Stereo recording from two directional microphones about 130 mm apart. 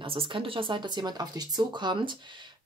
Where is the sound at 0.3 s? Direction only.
40° right (ahead or behind).